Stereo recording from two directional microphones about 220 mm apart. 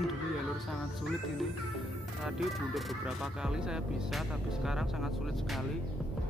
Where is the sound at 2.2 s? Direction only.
Centre (ahead or behind).